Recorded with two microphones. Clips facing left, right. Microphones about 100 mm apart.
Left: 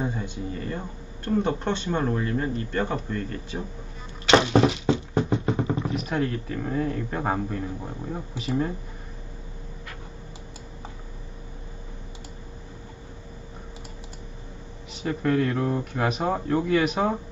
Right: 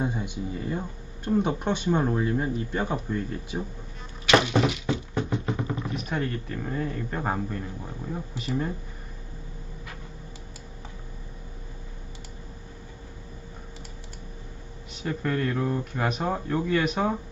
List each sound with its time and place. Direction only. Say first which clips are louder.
0.0 s speech: even; 15° right (ahead or behind)
4.3 s vehicle: left 3 dB; 30° left (ahead or behind)
5.9 s speech: left 3 dB; centre (ahead or behind)
15.0 s speech: left 4 dB; centre (ahead or behind)